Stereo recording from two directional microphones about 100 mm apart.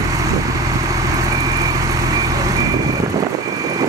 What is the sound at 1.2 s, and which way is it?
Vehicle, 35° right (ahead or behind).